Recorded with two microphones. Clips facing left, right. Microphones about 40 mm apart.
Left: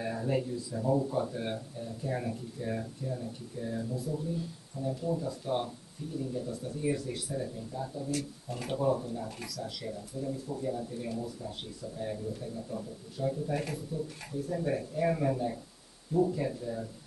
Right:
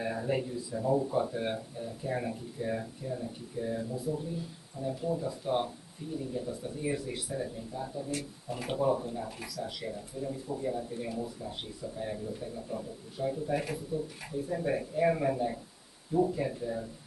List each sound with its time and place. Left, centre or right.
0.0 s speech: centre